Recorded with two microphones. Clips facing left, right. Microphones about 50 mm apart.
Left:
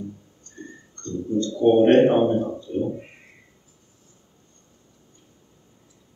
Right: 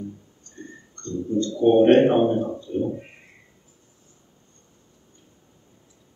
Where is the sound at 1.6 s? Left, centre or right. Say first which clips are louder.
Even; right.